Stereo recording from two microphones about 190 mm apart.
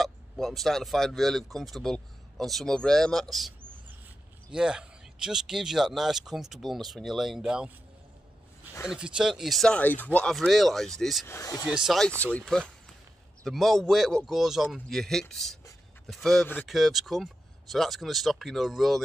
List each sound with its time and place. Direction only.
0.0 s speech: centre (ahead or behind)
8.8 s speech: 5° right (ahead or behind)
11.2 s speech: 15° left (ahead or behind)
11.7 s speech: centre (ahead or behind)